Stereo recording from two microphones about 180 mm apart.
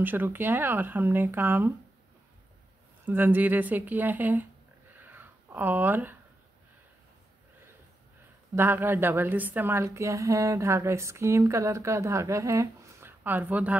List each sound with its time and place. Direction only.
0.0 s a woman's voice: 10° right (ahead or behind)
3.1 s a woman's voice: 10° right (ahead or behind)
4.9 s a sound: 10° right (ahead or behind)
8.5 s a woman's voice: 10° right (ahead or behind)